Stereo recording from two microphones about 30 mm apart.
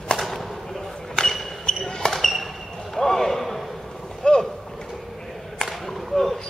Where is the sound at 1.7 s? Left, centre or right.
Left.